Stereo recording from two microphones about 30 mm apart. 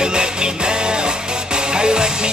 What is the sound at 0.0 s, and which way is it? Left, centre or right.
Music, right.